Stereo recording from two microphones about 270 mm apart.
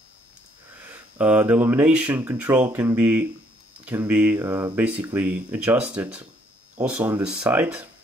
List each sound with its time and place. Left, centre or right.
0.8 s speech: centre